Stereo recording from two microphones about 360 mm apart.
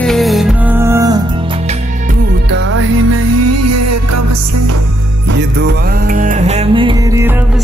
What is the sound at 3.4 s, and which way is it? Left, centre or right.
Music, right.